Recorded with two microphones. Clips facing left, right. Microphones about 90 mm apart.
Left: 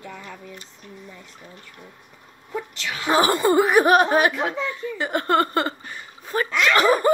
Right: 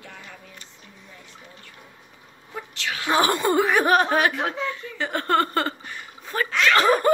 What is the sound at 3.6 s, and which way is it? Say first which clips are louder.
Speech: left 3 dB; 15° left (ahead or behind).